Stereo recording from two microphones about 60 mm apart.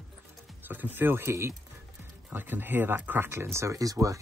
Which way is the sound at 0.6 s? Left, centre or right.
Right.